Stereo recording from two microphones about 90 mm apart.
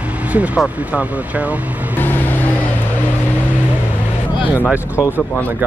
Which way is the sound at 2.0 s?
20° left (ahead or behind).